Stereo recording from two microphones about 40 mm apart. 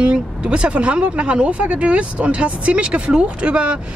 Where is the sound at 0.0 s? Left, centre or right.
Right.